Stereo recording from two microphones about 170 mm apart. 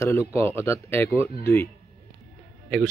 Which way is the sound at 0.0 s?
15° left (ahead or behind).